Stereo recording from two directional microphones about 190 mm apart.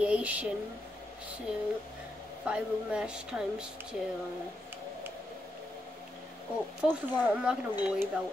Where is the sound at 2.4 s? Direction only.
5° right (ahead or behind).